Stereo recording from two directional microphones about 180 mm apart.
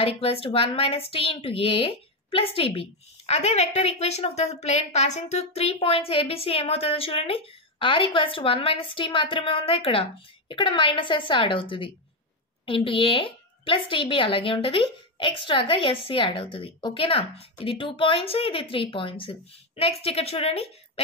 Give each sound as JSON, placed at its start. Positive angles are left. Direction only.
{"t": 0.2, "sound": "a woman's voice", "side_deg": 30}